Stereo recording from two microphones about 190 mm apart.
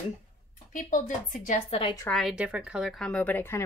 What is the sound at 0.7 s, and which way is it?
Speech, 45° left (ahead or behind).